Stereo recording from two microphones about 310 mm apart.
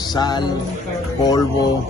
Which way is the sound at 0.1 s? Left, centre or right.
Centre.